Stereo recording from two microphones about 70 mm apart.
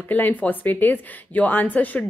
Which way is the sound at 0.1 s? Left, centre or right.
Left.